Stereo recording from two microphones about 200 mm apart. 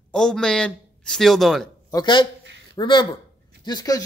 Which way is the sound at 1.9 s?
20° left (ahead or behind).